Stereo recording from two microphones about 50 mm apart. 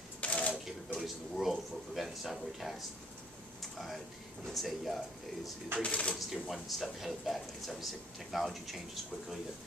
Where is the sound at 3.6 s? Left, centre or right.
Centre.